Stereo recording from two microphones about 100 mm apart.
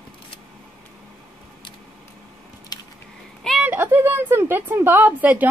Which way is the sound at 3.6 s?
20° right (ahead or behind).